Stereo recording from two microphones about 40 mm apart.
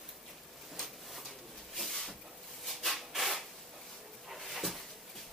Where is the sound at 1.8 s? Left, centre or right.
Centre.